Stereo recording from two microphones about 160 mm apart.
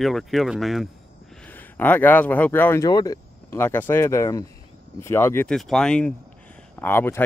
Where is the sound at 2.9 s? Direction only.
25° left (ahead or behind).